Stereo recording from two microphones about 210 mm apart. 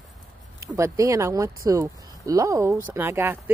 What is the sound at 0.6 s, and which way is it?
Speech, 15° right (ahead or behind).